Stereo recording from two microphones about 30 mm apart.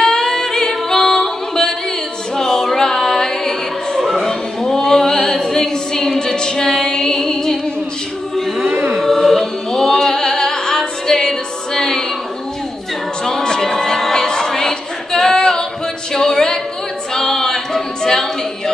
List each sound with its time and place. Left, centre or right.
0.0 s a capella: centre
2.3 s music: centre
4.3 s singing: centre
6.6 s music: centre
9.0 s music: centre
13.6 s music: centre
16.1 s a sound: centre
17.1 s a capella: centre